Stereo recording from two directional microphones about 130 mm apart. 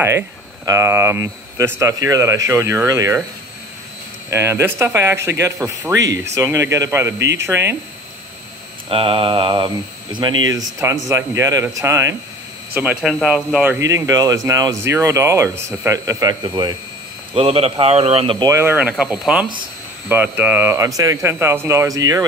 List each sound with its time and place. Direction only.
0.7 s speech: 20° right (ahead or behind)
4.3 s speech: 20° right (ahead or behind)
8.8 s mantra: 45° right (ahead or behind)
10.5 s speech: 25° right (ahead or behind)
12.7 s speech: 10° right (ahead or behind)
13.7 s speech: 25° right (ahead or behind)
17.3 s a man's voice: 45° right (ahead or behind)
18.4 s speech: 20° right (ahead or behind)